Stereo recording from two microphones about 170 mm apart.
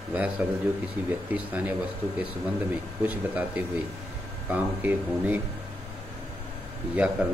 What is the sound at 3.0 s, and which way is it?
Speech, 10° right (ahead or behind).